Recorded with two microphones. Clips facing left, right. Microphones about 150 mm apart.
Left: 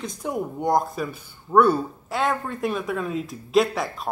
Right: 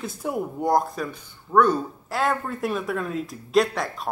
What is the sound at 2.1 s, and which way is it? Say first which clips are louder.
Speech: even; centre (ahead or behind).